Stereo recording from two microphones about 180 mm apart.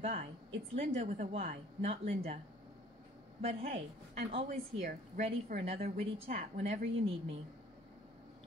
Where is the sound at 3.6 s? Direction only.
35° right (ahead or behind).